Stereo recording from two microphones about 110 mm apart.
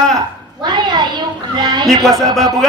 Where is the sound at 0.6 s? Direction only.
40° right (ahead or behind).